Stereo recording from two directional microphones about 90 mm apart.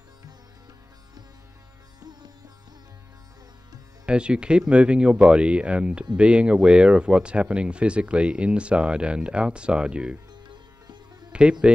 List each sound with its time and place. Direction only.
4.0 s speech: 10° right (ahead or behind)
10.5 s sitar: 55° right (ahead or behind)
11.6 s speech: 10° right (ahead or behind)